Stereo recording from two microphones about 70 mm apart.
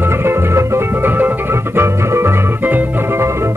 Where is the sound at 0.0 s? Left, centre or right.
Right.